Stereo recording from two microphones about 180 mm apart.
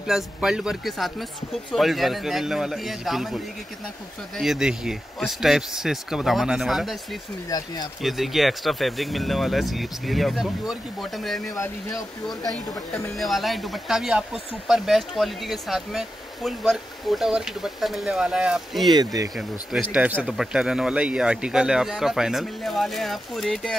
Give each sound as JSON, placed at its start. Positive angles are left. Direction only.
{"t": 0.0, "sound": "speech", "side_deg": -5}
{"t": 4.4, "sound": "speech", "side_deg": 0}
{"t": 7.4, "sound": "speech", "side_deg": 20}
{"t": 8.0, "sound": "speech", "side_deg": 0}
{"t": 18.9, "sound": "speech", "side_deg": -20}
{"t": 19.3, "sound": "speech", "side_deg": -5}